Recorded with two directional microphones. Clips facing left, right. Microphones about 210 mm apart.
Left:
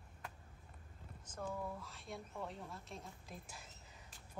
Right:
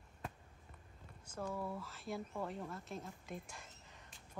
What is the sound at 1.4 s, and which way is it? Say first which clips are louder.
Speech: right 2 dB; centre (ahead or behind).